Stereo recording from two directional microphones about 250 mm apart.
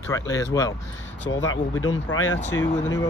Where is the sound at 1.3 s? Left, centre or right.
Left.